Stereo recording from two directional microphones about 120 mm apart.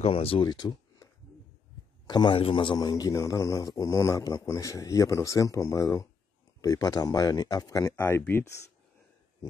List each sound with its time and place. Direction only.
0.0 s speech: 55° left (ahead or behind)
0.5 s a sound: 35° left (ahead or behind)
2.0 s a man's voice: 40° left (ahead or behind)
7.9 s a man's voice: 20° left (ahead or behind)